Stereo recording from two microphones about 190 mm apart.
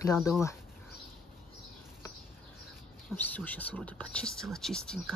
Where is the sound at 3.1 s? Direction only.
10° left (ahead or behind).